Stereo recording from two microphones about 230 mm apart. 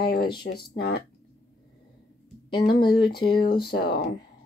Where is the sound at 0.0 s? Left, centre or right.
Left.